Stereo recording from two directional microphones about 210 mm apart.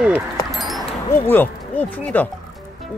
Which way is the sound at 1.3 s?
10° left (ahead or behind).